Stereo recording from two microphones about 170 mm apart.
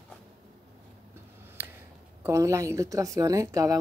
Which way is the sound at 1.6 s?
10° right (ahead or behind).